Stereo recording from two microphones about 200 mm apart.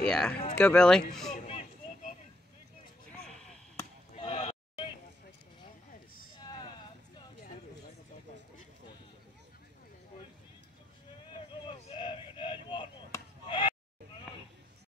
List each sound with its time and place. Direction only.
0.0 s speech: 5° left (ahead or behind)
3.1 s a sound: 5° left (ahead or behind)
4.2 s horse: 30° left (ahead or behind)
11.6 s chop: 25° left (ahead or behind)